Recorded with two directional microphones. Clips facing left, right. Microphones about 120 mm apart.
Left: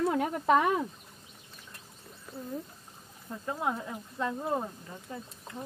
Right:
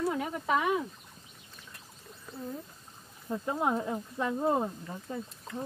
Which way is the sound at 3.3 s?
15° right (ahead or behind).